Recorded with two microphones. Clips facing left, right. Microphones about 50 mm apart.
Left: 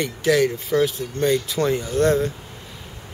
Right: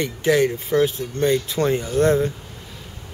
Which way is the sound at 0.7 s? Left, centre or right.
Centre.